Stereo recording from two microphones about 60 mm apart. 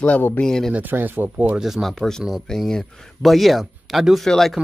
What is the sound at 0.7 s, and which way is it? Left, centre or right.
Speech, right.